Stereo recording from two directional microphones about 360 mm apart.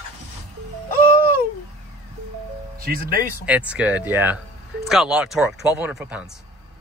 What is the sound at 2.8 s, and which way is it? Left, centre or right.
Speech, right.